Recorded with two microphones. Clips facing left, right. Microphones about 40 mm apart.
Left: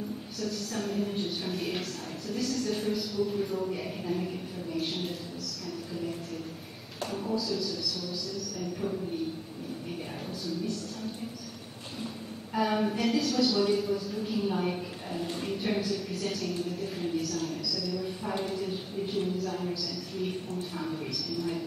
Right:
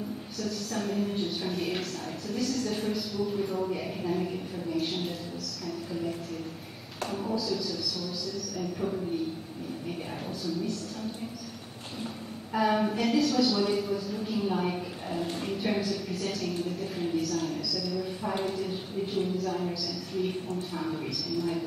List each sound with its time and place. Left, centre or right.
0.4 s a woman's voice: centre
7.1 s a woman's voice: centre
12.5 s a woman's voice: centre